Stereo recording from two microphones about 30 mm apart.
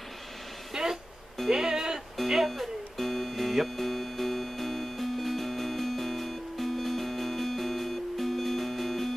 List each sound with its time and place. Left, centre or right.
0.8 s music: right
2.2 s speech: centre
2.5 s music: centre